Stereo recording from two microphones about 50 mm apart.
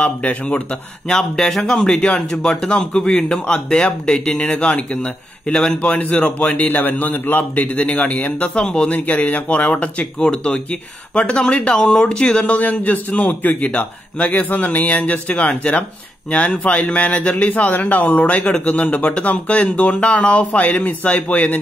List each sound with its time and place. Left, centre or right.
0.0 s speech: left
1.0 s speech: centre
5.8 s speech: left
6.6 s speech: left